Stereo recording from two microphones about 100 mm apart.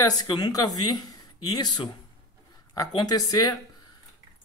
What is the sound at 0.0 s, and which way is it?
A woman's voice, 40° left (ahead or behind).